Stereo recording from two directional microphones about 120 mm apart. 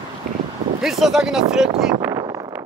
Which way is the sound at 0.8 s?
5° right (ahead or behind).